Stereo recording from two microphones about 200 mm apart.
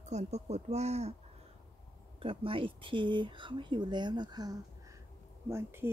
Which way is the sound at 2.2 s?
25° right (ahead or behind).